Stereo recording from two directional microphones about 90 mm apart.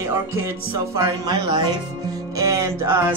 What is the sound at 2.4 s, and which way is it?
Music, 35° right (ahead or behind).